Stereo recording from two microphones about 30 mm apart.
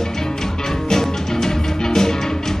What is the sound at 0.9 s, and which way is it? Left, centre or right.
Music, centre.